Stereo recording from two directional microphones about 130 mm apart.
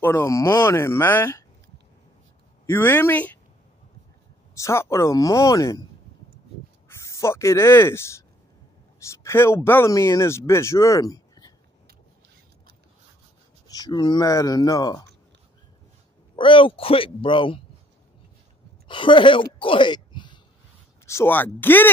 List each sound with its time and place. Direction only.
0.0 s speech: 20° left (ahead or behind)
2.6 s speech: 15° left (ahead or behind)
4.6 s speech: 25° left (ahead or behind)
6.9 s speech: 20° left (ahead or behind)
13.7 s speech: 30° left (ahead or behind)
16.3 s speech: 40° left (ahead or behind)
18.9 s speech: 40° left (ahead or behind)
21.0 s speech: 20° left (ahead or behind)